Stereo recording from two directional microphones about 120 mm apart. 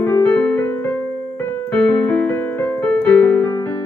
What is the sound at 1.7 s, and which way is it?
Keyboard, 10° left (ahead or behind).